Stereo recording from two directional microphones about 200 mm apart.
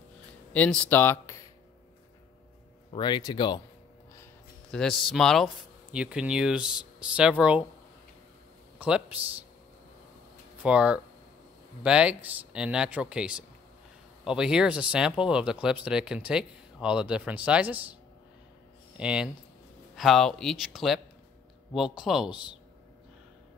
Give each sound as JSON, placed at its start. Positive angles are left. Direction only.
{"t": 0.5, "sound": "speech", "side_deg": 5}
{"t": 2.9, "sound": "speech", "side_deg": 20}
{"t": 4.6, "sound": "speech", "side_deg": 0}
{"t": 8.7, "sound": "speech", "side_deg": -5}
{"t": 10.6, "sound": "speech", "side_deg": -5}
{"t": 18.9, "sound": "speech", "side_deg": -5}